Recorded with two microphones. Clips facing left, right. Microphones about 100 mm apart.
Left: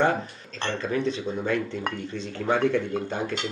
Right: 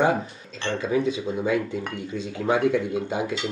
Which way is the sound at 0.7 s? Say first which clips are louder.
Right 4 dB; 10° right (ahead or behind).